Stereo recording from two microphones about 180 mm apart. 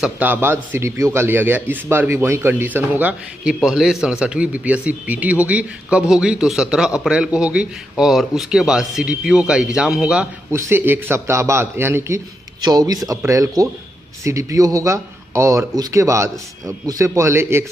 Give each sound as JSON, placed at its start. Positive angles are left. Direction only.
{"t": 0.0, "sound": "a man's voice", "side_deg": -10}